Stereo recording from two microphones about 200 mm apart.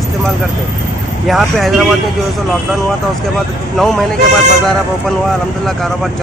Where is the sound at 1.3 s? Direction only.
Centre (ahead or behind).